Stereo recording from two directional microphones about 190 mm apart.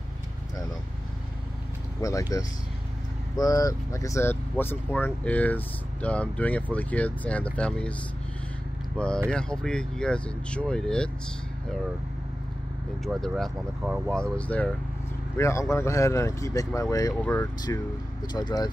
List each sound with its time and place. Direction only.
2.0 s speech: 15° left (ahead or behind)
8.9 s speech: 5° left (ahead or behind)
13.0 s speech: centre (ahead or behind)
14.3 s speech: 5° left (ahead or behind)
17.1 s speech: 5° left (ahead or behind)
17.7 s speech: 15° left (ahead or behind)